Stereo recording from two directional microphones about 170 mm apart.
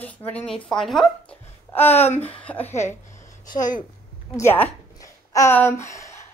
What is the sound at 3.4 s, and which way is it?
Speech, 50° left (ahead or behind).